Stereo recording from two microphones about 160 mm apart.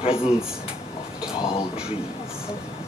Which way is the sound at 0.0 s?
35° left (ahead or behind).